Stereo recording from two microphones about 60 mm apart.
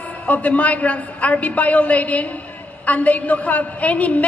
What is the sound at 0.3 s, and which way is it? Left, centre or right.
A woman's voice, left.